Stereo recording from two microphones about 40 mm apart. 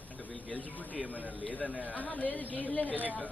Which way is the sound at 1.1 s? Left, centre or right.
Left.